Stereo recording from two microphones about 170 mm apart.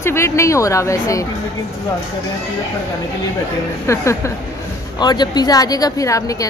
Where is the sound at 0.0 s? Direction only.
15° left (ahead or behind).